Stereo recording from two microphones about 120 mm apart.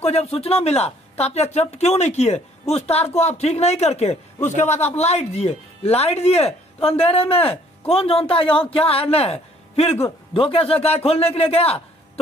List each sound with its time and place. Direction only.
0.0 s a man's voice: 60° left (ahead or behind)